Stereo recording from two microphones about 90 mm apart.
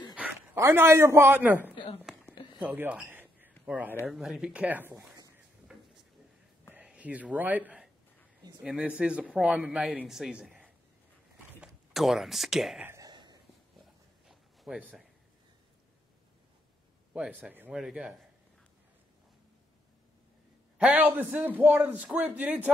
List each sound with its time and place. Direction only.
0.6 s a man's voice: 30° right (ahead or behind)
2.1 s a sound: 5° right (ahead or behind)
2.6 s a man's voice: 15° right (ahead or behind)
3.1 s a sound: 20° right (ahead or behind)
3.6 s speech: 15° right (ahead or behind)
4.1 s a man's voice: 5° right (ahead or behind); by 4.9 s 20° right (ahead or behind)
6.7 s a man's voice: 15° right (ahead or behind)
13.0 s a sound: 50° right (ahead or behind)
13.7 s a sound: centre (ahead or behind)
17.4 s a man's voice: 15° right (ahead or behind)
17.7 s a man's voice: 5° right (ahead or behind)
20.7 s a man's voice: 15° right (ahead or behind)